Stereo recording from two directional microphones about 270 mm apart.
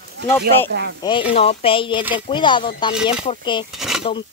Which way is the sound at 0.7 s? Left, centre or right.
Right.